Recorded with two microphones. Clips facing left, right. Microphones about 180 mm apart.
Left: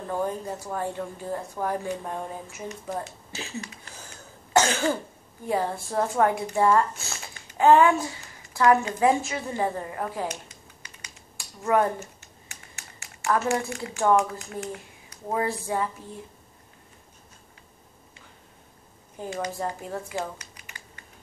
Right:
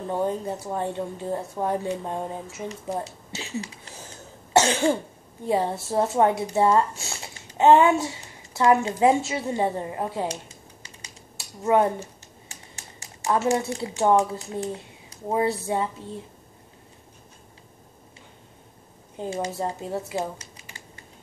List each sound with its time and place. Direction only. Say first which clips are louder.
0.1 s speech: right 3 dB; 20° right (ahead or behind)
11.3 s speech: right 2 dB; 20° right (ahead or behind)
12.0 s typing: right 2 dB; 35° right (ahead or behind)
13.3 s speech: right 2 dB; 20° right (ahead or behind)
19.1 s speech: right 3 dB; 25° right (ahead or behind)
20.1 s a sound: right 3 dB; 20° right (ahead or behind)